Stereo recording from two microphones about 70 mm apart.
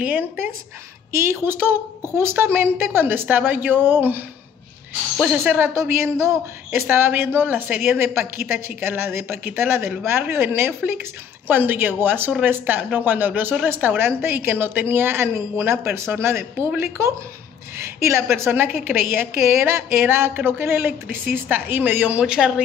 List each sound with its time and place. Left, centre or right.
0.0 s a woman's voice: right
5.8 s a woman's voice: right
6.9 s a woman's voice: right
22.2 s speech: centre